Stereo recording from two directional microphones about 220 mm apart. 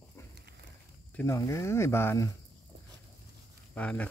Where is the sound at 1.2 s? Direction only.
15° left (ahead or behind).